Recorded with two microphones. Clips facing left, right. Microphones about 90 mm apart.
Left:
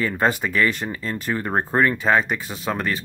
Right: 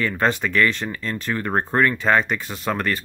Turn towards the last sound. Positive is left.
turn(degrees=5)  # may be behind; listen again after turning